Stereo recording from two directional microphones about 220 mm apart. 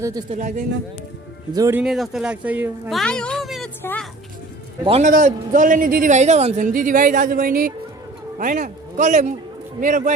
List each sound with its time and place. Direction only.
0.3 s a man's voice: 35° right (ahead or behind)
1.5 s speech: 15° right (ahead or behind)
3.8 s music: 5° left (ahead or behind)
4.8 s a man's voice: 25° right (ahead or behind)